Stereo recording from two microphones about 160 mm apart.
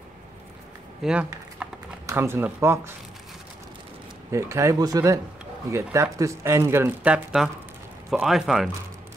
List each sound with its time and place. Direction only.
1.0 s a sound: 5° right (ahead or behind)
2.0 s speech: 15° right (ahead or behind)
4.3 s speech: 20° right (ahead or behind); by 8.6 s centre (ahead or behind)